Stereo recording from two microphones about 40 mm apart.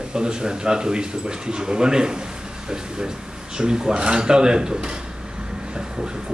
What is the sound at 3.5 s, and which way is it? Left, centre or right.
Speech, centre.